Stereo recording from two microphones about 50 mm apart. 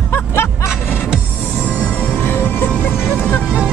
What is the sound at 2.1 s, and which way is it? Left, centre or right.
Music, left.